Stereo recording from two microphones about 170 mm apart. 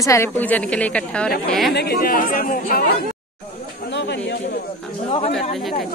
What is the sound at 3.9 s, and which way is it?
Chatter, 85° left.